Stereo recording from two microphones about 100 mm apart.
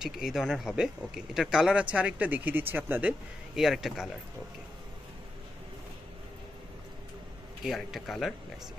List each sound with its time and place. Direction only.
0.0 s speech: 5° right (ahead or behind)
3.5 s speech: 5° right (ahead or behind)
7.6 s speech: centre (ahead or behind)